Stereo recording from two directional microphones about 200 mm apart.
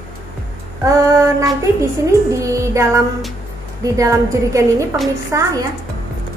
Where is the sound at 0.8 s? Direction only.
15° right (ahead or behind).